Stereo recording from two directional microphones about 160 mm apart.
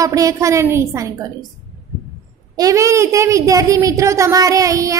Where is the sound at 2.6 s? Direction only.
20° right (ahead or behind).